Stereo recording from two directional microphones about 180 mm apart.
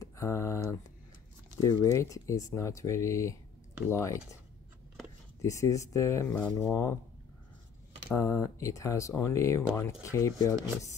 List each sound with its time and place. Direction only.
0.0 s a sound: 15° left (ahead or behind)
1.6 s speech: 15° left (ahead or behind)
5.4 s speech: 15° left (ahead or behind)
8.1 s speech: 15° left (ahead or behind)